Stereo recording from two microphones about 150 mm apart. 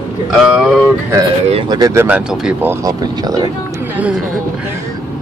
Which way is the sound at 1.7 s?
25° right (ahead or behind).